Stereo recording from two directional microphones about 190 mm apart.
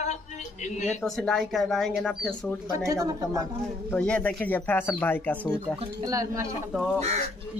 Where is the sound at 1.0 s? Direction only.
Centre (ahead or behind).